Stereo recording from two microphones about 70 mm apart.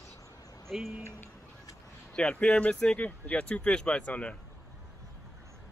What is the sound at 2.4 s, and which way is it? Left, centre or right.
Speech, centre.